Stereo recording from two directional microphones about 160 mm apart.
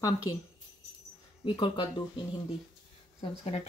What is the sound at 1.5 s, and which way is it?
Speech, 30° left (ahead or behind).